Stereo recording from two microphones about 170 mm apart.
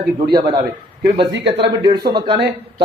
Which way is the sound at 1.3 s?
90° right.